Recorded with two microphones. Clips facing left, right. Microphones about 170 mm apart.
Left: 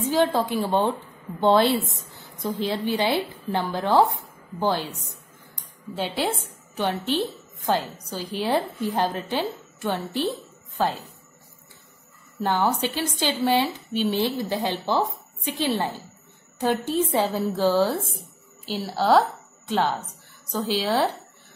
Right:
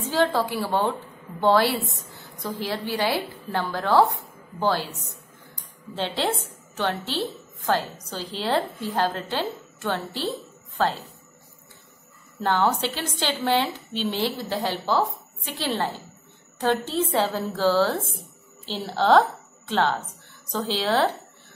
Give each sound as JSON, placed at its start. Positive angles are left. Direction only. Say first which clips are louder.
{"t": 0.0, "sound": "a woman's voice", "louder": "left 1 dB", "side_deg": 15}
{"t": 12.4, "sound": "a woman's voice", "louder": "even", "side_deg": 15}